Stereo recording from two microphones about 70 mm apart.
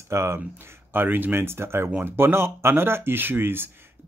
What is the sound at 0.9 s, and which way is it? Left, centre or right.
Speech, right.